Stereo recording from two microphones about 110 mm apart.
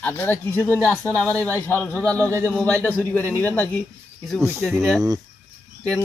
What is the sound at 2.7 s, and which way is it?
Speech, 15° left (ahead or behind).